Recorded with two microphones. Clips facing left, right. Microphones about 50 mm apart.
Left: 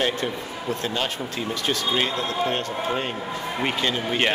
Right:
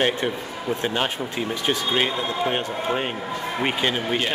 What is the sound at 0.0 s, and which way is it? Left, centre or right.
Speech, centre.